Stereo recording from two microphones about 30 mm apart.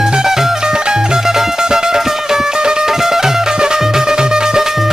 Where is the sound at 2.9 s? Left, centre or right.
Centre.